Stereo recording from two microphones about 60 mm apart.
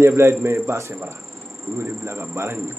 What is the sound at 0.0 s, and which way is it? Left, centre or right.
Speech, right.